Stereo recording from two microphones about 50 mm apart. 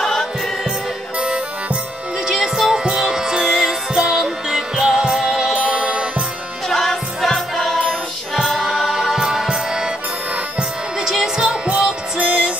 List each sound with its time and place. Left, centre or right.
0.0 s music: centre
2.2 s music: centre
6.7 s music: centre
8.4 s music: centre
11.1 s music: centre